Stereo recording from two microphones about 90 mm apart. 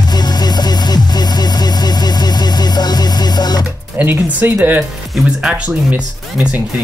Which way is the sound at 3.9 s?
25° right (ahead or behind).